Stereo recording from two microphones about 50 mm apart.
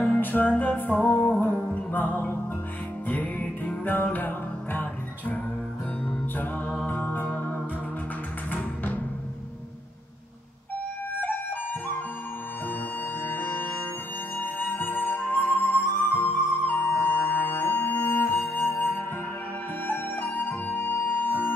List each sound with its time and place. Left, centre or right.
0.2 s music: left
6.9 s music: left
13.2 s music: left
14.8 s music: left
19.9 s music: left